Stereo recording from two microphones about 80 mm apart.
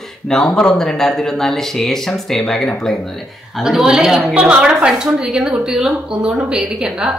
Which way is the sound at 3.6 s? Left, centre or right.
Centre.